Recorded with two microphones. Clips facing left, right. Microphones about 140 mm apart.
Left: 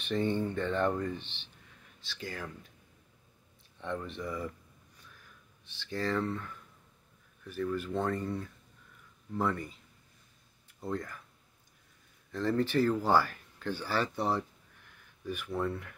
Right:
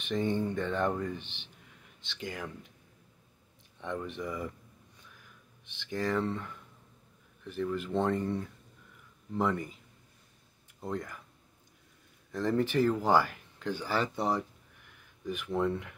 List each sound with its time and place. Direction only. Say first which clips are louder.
0.0 s speech: even; 15° right (ahead or behind)
3.7 s speech: right 1 dB; 15° right (ahead or behind)
5.7 s speech: right 1 dB; 15° right (ahead or behind)
10.8 s speech: even; 15° right (ahead or behind)
12.3 s speech: right 1 dB; 15° right (ahead or behind)